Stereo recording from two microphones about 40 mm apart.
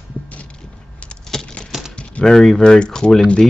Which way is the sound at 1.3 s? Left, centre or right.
Centre.